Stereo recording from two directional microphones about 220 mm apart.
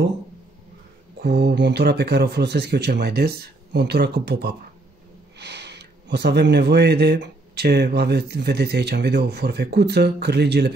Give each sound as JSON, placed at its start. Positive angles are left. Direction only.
{"t": 1.2, "sound": "speech", "side_deg": -50}